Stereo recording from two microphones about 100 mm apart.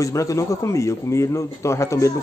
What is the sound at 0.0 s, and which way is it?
A man's voice, 30° left (ahead or behind).